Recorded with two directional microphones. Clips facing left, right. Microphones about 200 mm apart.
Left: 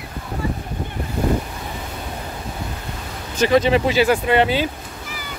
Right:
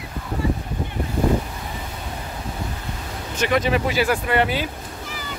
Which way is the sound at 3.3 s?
30° left (ahead or behind).